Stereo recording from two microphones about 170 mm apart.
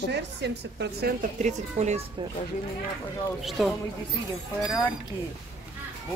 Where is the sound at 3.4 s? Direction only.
Centre (ahead or behind).